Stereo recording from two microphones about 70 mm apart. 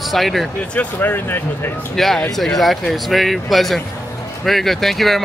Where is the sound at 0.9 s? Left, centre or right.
Left.